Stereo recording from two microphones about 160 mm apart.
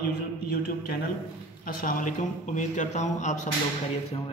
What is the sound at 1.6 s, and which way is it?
A man's voice, 60° left (ahead or behind).